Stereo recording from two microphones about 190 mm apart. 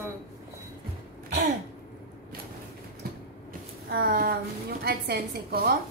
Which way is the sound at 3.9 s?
50° right (ahead or behind).